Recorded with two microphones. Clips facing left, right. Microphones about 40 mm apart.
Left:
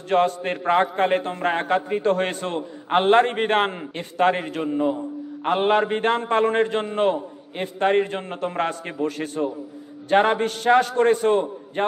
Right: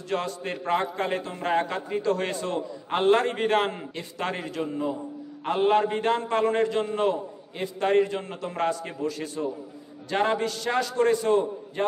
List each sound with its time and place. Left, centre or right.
0.1 s a man's voice: left